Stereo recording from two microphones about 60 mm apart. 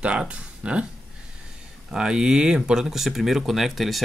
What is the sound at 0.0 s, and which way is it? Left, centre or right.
Speech, centre.